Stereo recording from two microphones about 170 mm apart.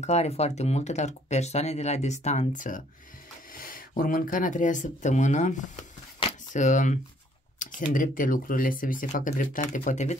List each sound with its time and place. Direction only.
0.0 s speech: 40° left (ahead or behind)